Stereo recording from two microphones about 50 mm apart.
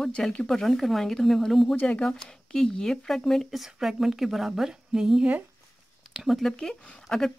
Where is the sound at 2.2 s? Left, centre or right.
Centre.